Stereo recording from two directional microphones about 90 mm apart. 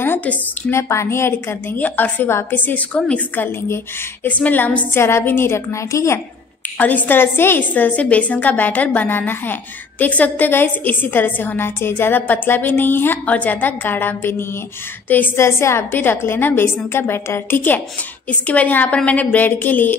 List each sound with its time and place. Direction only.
0.0 s speech: 20° left (ahead or behind)
0.7 s a woman's voice: 30° left (ahead or behind)
3.6 s a woman's voice: 25° left (ahead or behind)
6.8 s a woman's voice: 20° left (ahead or behind)